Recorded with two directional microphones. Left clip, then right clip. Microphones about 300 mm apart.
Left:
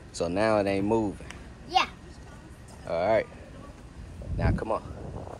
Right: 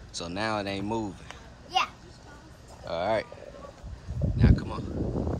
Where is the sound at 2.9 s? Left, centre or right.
Centre.